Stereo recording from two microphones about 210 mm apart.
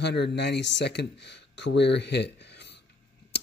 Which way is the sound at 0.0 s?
55° left (ahead or behind).